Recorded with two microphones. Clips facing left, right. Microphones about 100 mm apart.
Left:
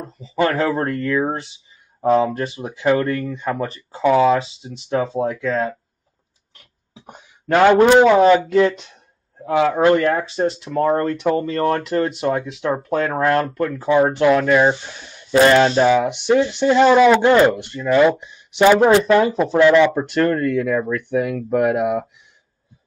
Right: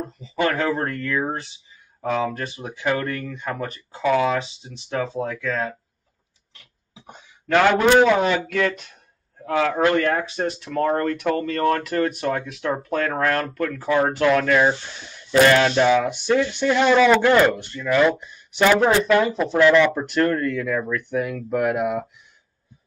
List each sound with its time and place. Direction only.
0.2 s speech: 35° left (ahead or behind)
4.4 s speech: 35° left (ahead or behind)
7.5 s speech: 20° left (ahead or behind)
8.2 s speech: 35° left (ahead or behind); by 18.9 s 20° left (ahead or behind)
18.9 s speech: 30° left (ahead or behind)
19.6 s speech: 15° left (ahead or behind)
19.9 s speech: 35° left (ahead or behind)